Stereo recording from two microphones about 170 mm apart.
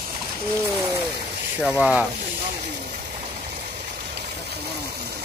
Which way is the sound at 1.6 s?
5° right (ahead or behind).